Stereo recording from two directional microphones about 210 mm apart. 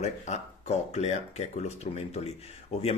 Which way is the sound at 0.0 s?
35° left (ahead or behind).